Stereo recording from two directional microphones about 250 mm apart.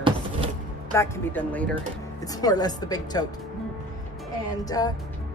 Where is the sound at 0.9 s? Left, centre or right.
Centre.